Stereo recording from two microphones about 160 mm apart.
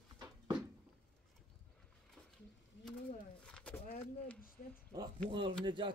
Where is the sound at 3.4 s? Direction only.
5° left (ahead or behind).